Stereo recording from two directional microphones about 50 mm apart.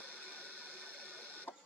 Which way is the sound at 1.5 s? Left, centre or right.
Left.